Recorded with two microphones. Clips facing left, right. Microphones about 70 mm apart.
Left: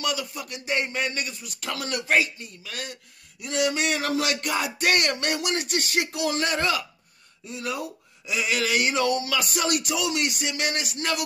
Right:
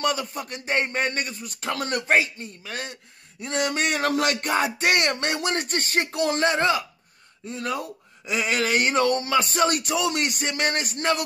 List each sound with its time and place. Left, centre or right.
0.0 s a man's voice: right
6.5 s speech: right
7.4 s a man's voice: right